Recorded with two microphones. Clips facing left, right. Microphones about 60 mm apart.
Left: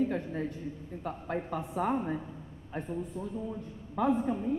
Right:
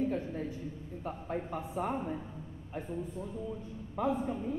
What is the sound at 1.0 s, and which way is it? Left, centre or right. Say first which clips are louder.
A man's voice: left 2 dB; left.